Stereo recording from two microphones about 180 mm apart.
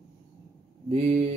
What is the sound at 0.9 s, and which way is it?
Speech, 40° right (ahead or behind).